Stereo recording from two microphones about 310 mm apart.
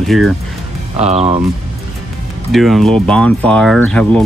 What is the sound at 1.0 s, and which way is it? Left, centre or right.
Speech, centre.